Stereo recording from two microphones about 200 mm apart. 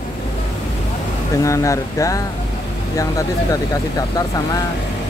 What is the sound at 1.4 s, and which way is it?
Speech, 15° left (ahead or behind).